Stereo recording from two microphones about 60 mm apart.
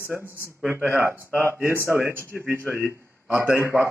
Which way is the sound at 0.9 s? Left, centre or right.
Right.